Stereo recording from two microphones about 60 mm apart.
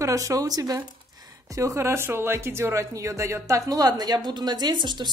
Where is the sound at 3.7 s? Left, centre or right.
Right.